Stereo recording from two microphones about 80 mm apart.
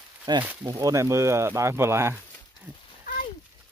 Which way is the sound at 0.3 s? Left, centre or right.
Right.